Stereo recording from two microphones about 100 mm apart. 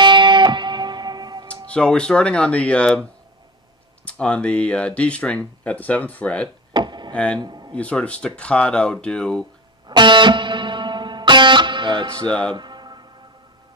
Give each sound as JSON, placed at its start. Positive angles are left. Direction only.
{"t": 0.0, "sound": "music", "side_deg": -50}
{"t": 1.7, "sound": "speech", "side_deg": 10}
{"t": 6.7, "sound": "a sound", "side_deg": -50}
{"t": 7.3, "sound": "a man's voice", "side_deg": -45}
{"t": 7.7, "sound": "speech", "side_deg": 10}
{"t": 9.8, "sound": "music", "side_deg": -50}
{"t": 12.3, "sound": "speech", "side_deg": 10}
{"t": 12.5, "sound": "music", "side_deg": -45}